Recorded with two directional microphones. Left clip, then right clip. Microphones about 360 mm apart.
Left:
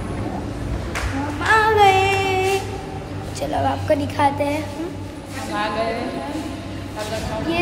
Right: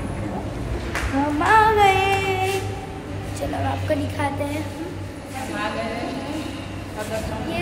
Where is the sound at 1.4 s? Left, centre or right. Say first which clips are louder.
Left 1 dB; centre.